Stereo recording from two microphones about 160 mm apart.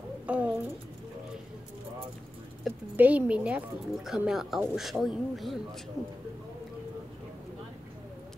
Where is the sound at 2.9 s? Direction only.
10° right (ahead or behind).